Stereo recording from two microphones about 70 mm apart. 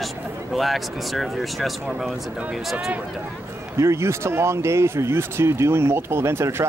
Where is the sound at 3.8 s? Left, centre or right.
Right.